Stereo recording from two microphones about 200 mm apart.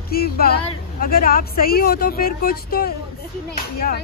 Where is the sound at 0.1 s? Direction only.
50° left (ahead or behind).